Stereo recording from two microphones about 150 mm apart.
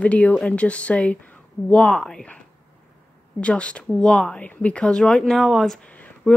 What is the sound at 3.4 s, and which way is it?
Speech, 10° left (ahead or behind).